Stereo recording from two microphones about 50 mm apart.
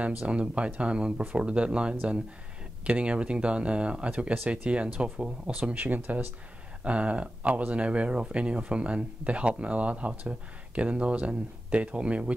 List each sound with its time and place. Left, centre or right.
0.2 s speech: right
6.8 s speech: right